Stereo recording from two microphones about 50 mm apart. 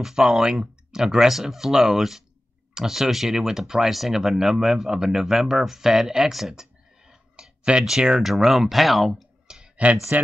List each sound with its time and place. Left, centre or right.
0.0 s speech: centre
6.5 s clicking: centre
8.2 s speech: centre
9.5 s a sound: centre
10.1 s speech: right